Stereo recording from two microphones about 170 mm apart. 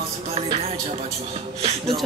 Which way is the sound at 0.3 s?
35° right (ahead or behind).